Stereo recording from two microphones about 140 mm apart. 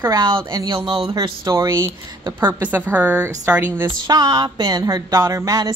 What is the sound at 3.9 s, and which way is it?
Speech, 30° right (ahead or behind).